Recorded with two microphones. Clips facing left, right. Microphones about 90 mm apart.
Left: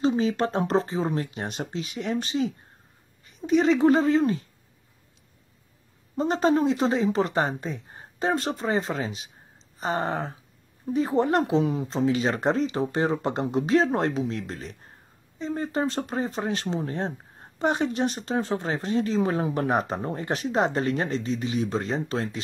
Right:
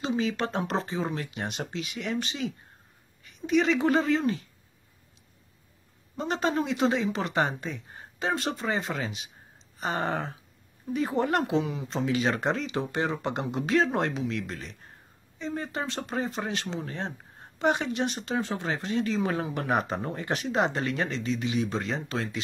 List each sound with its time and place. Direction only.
0.0 s a woman's voice: 40° left (ahead or behind)
6.1 s speech: 35° left (ahead or behind)
9.8 s a sound: 30° left (ahead or behind)
11.1 s speech: 30° left (ahead or behind)